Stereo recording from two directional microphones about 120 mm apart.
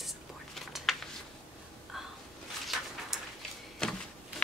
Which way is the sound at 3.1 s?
5° right (ahead or behind).